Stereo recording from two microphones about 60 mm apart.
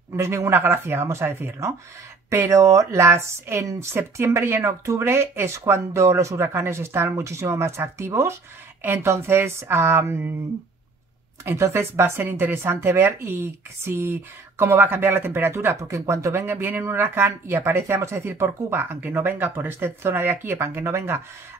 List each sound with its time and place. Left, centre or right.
0.1 s speech: right
2.2 s speech: right
11.7 s speech: right
16.4 s speech: right